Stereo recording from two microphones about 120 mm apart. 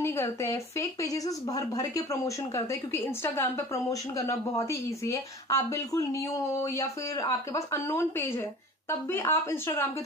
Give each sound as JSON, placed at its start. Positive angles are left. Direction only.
{"t": 0.0, "sound": "a woman's voice", "side_deg": 20}